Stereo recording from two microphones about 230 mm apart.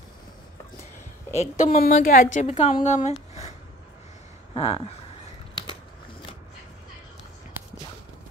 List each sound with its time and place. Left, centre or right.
1.4 s a woman's voice: left
4.6 s speech: left